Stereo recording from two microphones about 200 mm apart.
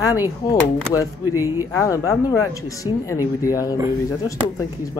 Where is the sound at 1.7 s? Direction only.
15° left (ahead or behind).